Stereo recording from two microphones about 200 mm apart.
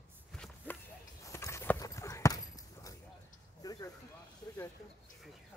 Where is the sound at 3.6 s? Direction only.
20° left (ahead or behind).